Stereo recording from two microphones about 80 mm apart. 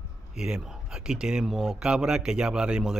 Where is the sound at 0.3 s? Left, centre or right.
Centre.